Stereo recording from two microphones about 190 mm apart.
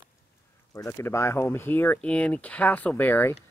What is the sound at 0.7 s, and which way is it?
Speech, 10° left (ahead or behind).